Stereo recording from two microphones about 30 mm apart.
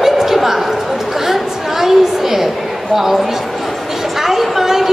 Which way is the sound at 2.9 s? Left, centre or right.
Centre.